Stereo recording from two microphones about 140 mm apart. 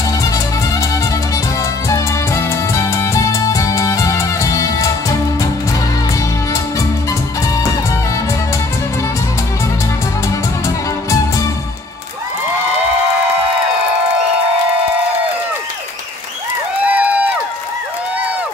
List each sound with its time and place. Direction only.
0.2 s music: 25° left (ahead or behind)
7.1 s music: 25° left (ahead or behind)
16.8 s a sound: 10° right (ahead or behind)